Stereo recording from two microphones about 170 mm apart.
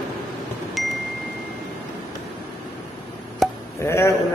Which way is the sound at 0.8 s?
Centre (ahead or behind).